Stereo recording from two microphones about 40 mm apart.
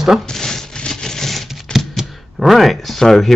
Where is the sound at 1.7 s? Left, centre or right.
Centre.